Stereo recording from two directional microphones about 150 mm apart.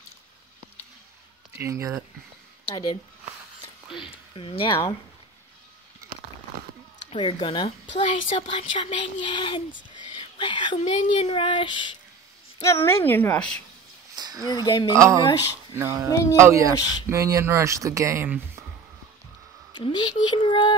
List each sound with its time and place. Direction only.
1.5 s speech: 20° right (ahead or behind)
4.0 s a woman's voice: 35° left (ahead or behind)
7.2 s a woman's voice: 35° left (ahead or behind)
10.1 s whispering: 30° left (ahead or behind)
10.8 s a woman's voice: 40° left (ahead or behind)
12.5 s a woman's voice: 20° left (ahead or behind)
14.1 s a sound: 25° right (ahead or behind)
14.5 s speech: 25° left (ahead or behind)
15.0 s speech: 20° right (ahead or behind)
16.1 s speech: 20° left (ahead or behind)
16.3 s speech: 20° right (ahead or behind)
19.7 s a woman's voice: 30° left (ahead or behind)